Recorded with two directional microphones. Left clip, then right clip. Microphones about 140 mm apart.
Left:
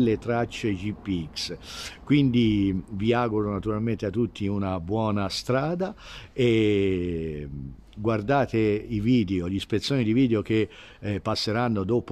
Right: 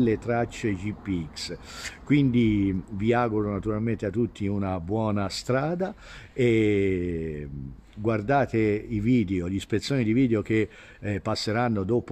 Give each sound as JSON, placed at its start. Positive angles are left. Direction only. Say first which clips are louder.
{"t": 0.0, "sound": "speech", "louder": "even", "side_deg": 10}